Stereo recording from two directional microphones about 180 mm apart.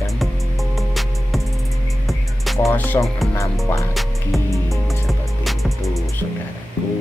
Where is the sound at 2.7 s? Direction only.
10° left (ahead or behind).